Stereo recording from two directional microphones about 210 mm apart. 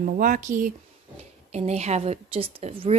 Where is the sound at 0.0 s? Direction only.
40° right (ahead or behind).